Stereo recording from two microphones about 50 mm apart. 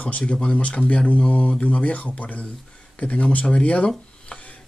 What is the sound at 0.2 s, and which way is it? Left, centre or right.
A man's voice, centre.